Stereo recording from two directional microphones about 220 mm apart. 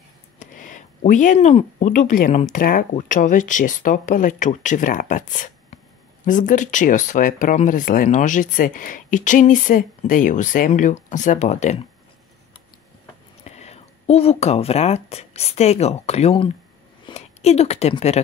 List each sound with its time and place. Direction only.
0.4 s speech: 35° left (ahead or behind)
13.4 s a woman's voice: 30° left (ahead or behind)